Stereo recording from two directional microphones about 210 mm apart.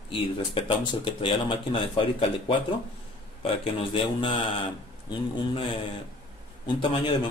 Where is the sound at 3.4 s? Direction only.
25° left (ahead or behind).